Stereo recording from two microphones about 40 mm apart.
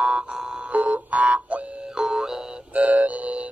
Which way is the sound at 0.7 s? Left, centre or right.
Right.